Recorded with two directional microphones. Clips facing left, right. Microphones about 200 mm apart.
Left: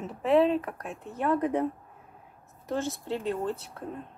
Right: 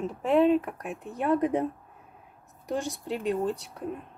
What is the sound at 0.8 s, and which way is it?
Speech, 15° right (ahead or behind).